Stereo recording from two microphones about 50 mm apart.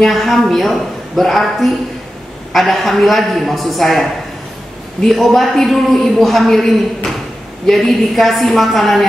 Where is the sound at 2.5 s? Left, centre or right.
Centre.